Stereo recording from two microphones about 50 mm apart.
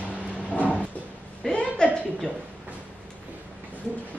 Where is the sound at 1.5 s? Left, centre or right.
Centre.